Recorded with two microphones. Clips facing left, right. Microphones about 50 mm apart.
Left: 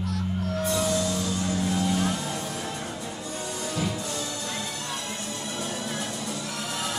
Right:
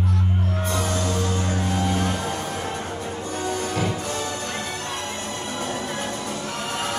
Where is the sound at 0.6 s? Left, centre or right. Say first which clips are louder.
Even; right.